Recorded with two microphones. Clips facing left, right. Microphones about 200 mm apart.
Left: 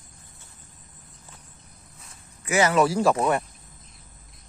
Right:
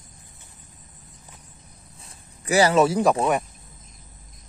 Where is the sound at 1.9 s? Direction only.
30° right (ahead or behind).